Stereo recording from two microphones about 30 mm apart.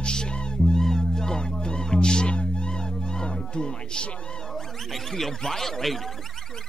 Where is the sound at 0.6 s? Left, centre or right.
Centre; by 4.0 s left.